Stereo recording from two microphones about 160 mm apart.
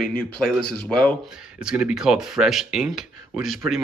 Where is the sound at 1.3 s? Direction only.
5° right (ahead or behind).